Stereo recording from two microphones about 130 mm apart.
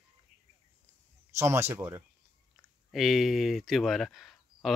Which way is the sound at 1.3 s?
20° right (ahead or behind).